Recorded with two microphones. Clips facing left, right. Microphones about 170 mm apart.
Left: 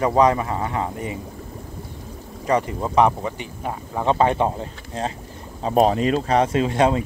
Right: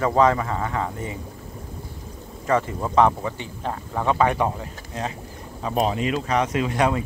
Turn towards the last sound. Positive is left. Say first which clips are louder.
# left 3 dB
turn(degrees=25)  # may be behind; listen again after turning